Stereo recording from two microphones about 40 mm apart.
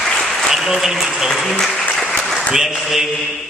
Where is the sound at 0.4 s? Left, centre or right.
Centre.